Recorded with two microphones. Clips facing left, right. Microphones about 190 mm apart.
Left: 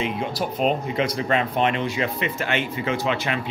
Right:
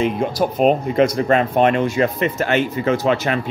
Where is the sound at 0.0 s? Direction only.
45° right (ahead or behind).